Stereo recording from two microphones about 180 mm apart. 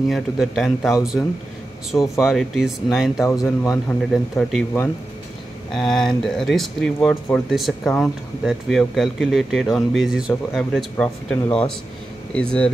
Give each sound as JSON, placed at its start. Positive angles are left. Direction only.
{"t": 0.1, "sound": "speech", "side_deg": 0}
{"t": 1.9, "sound": "speech", "side_deg": 15}
{"t": 2.2, "sound": "speech", "side_deg": 0}
{"t": 3.4, "sound": "speech", "side_deg": 15}
{"t": 4.1, "sound": "speech", "side_deg": 0}